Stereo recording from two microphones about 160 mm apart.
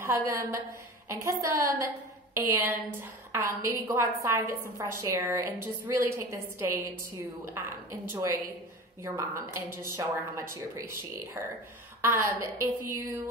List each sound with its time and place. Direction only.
0.0 s a woman's voice: 15° right (ahead or behind)